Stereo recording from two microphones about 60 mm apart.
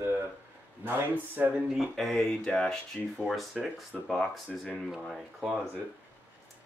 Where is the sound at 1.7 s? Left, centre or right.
Centre.